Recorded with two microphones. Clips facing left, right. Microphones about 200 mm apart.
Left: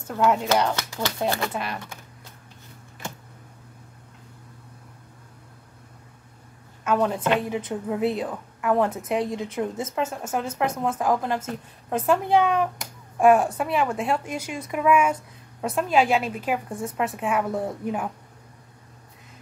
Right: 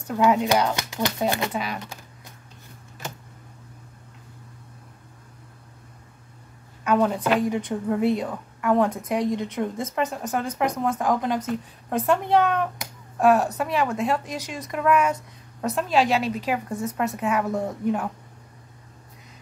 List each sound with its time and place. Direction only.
0.1 s a woman's voice: centre (ahead or behind)
0.7 s speech: 15° right (ahead or behind)
1.5 s a woman's voice: centre (ahead or behind)
6.8 s a woman's voice: centre (ahead or behind)